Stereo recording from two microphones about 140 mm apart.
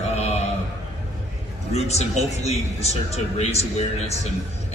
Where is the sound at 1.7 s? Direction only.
50° left (ahead or behind).